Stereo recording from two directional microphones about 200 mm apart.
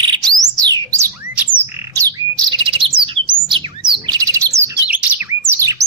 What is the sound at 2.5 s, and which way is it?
Bird, 25° right (ahead or behind).